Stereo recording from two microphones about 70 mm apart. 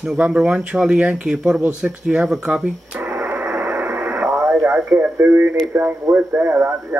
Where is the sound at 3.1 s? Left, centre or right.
Right.